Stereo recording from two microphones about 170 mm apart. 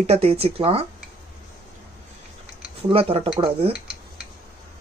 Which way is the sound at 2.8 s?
35° right (ahead or behind).